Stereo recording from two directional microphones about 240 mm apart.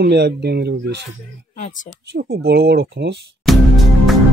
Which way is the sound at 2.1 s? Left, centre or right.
Right.